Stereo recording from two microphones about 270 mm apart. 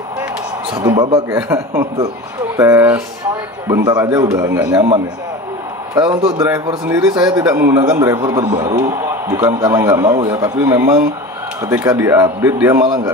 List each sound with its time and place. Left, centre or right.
1.3 s a man's voice: centre
5.9 s a man's voice: centre
6.3 s a man's voice: centre